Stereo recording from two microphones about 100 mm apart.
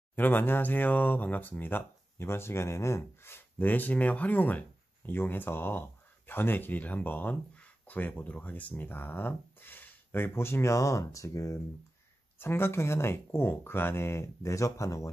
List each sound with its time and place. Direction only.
0.1 s speech: 20° left (ahead or behind)